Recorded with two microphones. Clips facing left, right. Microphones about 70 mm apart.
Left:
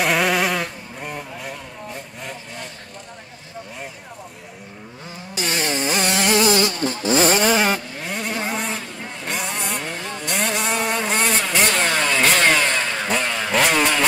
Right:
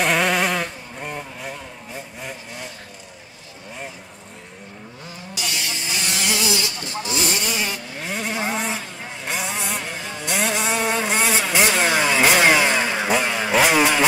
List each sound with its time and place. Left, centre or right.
0.0 s vehicle: centre
5.3 s a sound: left
8.0 s vehicle: centre